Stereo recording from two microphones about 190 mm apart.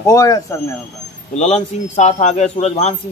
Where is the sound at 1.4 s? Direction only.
35° left (ahead or behind).